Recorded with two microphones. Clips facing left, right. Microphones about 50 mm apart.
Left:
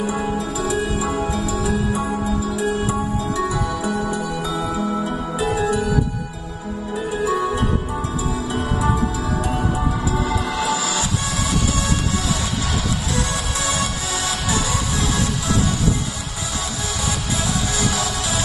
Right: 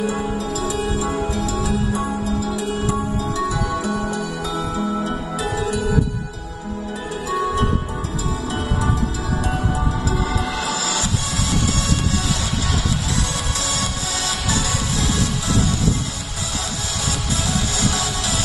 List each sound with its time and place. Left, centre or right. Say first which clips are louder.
0.2 s music: left 1 dB; left
10.2 s music: left 2 dB; left
13.7 s music: left 2 dB; left
17.7 s music: even; left